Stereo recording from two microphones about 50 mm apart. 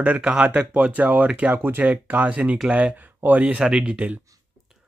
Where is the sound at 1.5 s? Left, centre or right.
Right.